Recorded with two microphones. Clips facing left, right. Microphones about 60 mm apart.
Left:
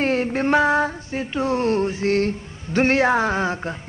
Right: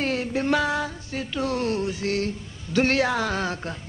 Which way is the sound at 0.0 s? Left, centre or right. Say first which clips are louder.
Left 5 dB; left.